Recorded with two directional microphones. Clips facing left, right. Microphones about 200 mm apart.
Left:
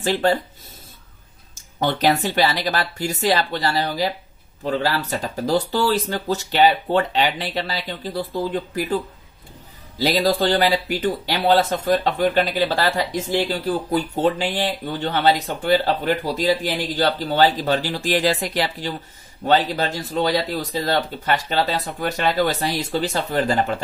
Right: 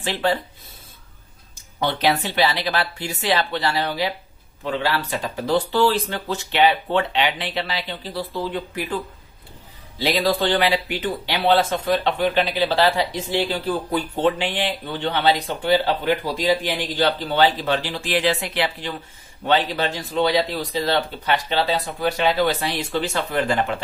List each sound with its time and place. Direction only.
0.0 s speech: 45° left (ahead or behind)
1.5 s a sound: 45° left (ahead or behind)
2.3 s speech: 40° left (ahead or behind)